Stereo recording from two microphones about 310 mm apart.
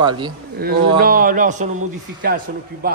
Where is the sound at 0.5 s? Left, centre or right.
Right.